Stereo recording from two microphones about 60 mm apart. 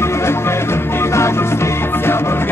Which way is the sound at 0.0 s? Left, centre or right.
Left.